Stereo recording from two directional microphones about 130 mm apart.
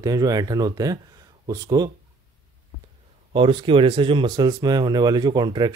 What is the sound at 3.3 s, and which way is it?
Speech, 40° right (ahead or behind).